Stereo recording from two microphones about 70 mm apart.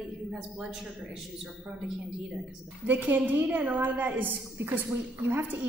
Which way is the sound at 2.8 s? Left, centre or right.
Right.